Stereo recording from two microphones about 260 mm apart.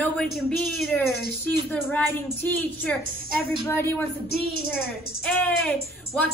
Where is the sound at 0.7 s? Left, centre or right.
Centre.